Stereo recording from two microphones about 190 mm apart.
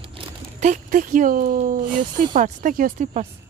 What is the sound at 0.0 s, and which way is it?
Speech, 35° right (ahead or behind).